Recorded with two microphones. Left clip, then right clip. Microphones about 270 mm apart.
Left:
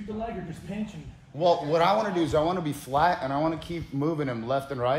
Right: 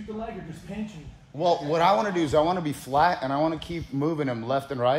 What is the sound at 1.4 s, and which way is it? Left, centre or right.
A man's voice, right.